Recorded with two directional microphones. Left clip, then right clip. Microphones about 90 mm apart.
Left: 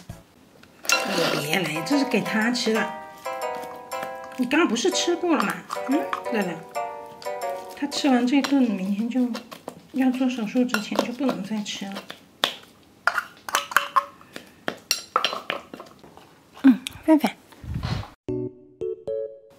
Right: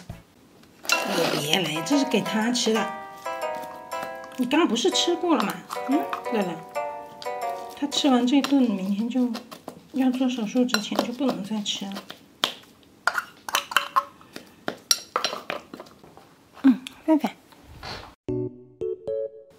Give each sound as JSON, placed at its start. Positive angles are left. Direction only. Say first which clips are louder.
{"t": 0.8, "sound": "music", "louder": "left 1 dB", "side_deg": -10}
{"t": 2.3, "sound": "speech", "louder": "left 1 dB", "side_deg": -15}
{"t": 2.9, "sound": "music", "louder": "even", "side_deg": 0}
{"t": 4.3, "sound": "speech", "louder": "left 1 dB", "side_deg": -15}
{"t": 6.7, "sound": "music", "louder": "even", "side_deg": 0}
{"t": 7.8, "sound": "speech", "louder": "even", "side_deg": -15}
{"t": 11.8, "sound": "a sound", "louder": "left 1 dB", "side_deg": -10}
{"t": 14.6, "sound": "cutlery", "louder": "right 2 dB", "side_deg": -15}
{"t": 15.1, "sound": "dishes", "louder": "left 3 dB", "side_deg": -15}
{"t": 16.8, "sound": "a sound", "louder": "left 3 dB", "side_deg": 15}
{"t": 18.3, "sound": "music", "louder": "even", "side_deg": 0}